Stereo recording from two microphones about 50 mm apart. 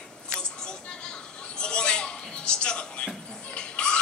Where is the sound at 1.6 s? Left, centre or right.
Centre.